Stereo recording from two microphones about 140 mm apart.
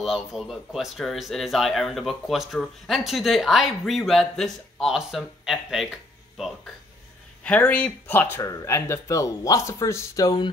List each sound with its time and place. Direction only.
0.0 s speech: centre (ahead or behind)
6.3 s a sound: centre (ahead or behind)
7.4 s speech: 10° left (ahead or behind); by 10.5 s 30° left (ahead or behind)